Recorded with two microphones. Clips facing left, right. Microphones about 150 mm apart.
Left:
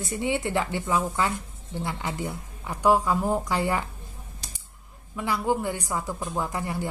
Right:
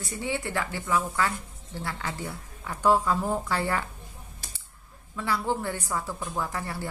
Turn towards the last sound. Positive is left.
turn(degrees=15)  # may be behind; listen again after turning